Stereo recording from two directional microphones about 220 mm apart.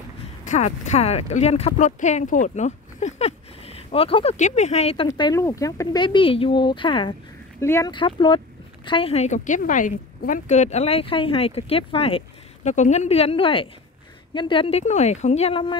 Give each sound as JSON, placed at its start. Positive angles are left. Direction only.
{"t": 0.5, "sound": "speech", "side_deg": 30}
{"t": 5.0, "sound": "speech", "side_deg": 15}